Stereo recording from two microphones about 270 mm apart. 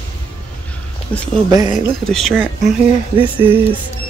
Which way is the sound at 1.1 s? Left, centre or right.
Centre.